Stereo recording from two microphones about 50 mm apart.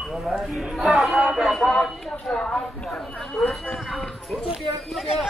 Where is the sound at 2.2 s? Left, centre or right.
Centre.